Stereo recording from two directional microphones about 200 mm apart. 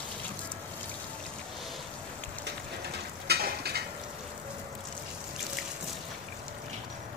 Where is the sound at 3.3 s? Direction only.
50° right (ahead or behind).